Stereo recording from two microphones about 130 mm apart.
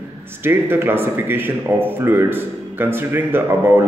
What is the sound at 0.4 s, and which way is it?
Speech, 15° right (ahead or behind).